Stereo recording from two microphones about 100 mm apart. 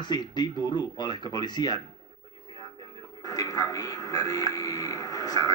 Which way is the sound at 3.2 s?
40° left (ahead or behind).